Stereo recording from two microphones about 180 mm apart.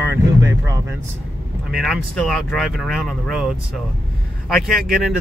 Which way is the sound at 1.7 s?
Centre (ahead or behind).